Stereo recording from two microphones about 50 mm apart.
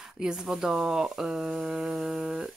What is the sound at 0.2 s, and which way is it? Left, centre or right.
Speech, centre.